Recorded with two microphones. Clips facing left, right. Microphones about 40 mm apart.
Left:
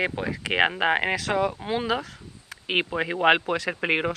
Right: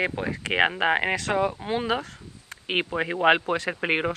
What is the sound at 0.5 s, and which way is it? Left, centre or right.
Speech, centre.